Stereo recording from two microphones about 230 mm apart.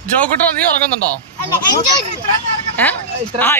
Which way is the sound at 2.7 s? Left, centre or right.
Centre.